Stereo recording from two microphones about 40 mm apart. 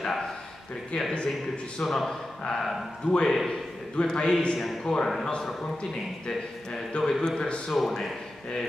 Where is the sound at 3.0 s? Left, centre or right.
Left.